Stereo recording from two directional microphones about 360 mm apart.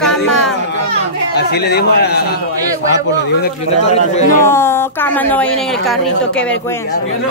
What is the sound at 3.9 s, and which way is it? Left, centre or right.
Speech, centre.